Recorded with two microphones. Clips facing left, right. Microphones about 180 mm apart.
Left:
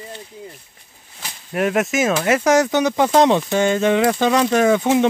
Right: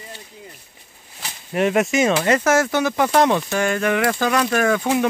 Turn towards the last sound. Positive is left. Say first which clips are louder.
# left 3 dB
turn(degrees=20)  # may be behind; listen again after turning